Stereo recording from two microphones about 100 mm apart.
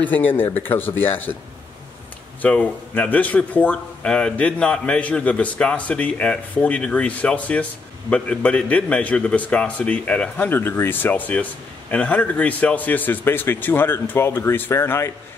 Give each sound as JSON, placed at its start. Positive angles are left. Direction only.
{"t": 0.0, "sound": "speech", "side_deg": 15}
{"t": 2.4, "sound": "speech", "side_deg": 15}